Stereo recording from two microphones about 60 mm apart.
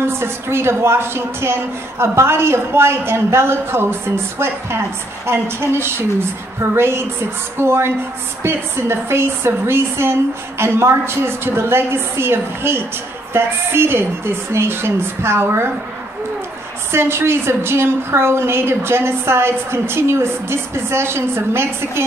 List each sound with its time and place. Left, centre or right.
0.0 s a woman's voice: right
16.9 s a woman's voice: right